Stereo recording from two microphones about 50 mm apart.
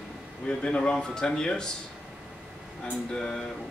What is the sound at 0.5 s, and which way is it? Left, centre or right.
Speech, left.